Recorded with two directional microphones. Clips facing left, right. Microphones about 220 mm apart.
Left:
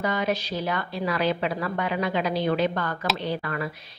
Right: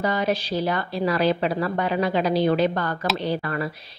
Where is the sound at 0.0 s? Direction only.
35° right (ahead or behind).